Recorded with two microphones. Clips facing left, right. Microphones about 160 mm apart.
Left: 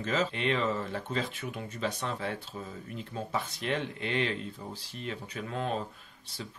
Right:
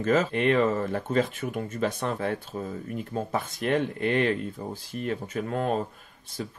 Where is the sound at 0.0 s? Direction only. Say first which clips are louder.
Right 7 dB; 50° right (ahead or behind).